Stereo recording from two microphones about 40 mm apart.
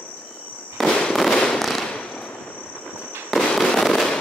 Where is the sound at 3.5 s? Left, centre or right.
Centre.